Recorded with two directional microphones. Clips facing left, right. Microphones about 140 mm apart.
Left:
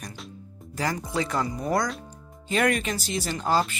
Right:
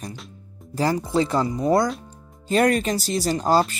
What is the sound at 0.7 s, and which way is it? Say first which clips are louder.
Speech: right 7 dB; 30° right (ahead or behind).